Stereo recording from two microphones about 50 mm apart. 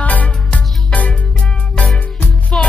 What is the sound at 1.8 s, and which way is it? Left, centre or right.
Music, left.